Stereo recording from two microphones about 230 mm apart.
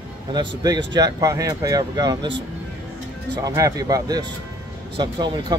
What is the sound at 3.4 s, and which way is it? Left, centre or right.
Speech, centre.